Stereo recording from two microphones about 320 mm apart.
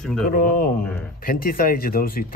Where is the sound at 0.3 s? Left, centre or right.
Left.